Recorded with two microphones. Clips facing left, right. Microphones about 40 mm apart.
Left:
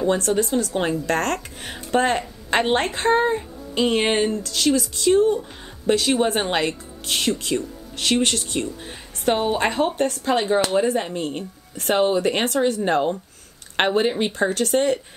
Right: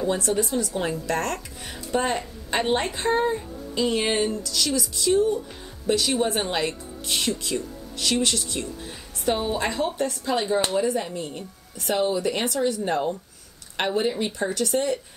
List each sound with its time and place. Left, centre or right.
0.2 s speech: left